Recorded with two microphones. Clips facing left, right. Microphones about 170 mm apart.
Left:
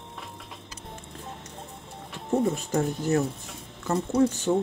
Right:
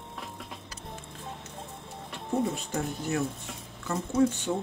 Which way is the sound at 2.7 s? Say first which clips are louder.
Left 6 dB; 40° left (ahead or behind).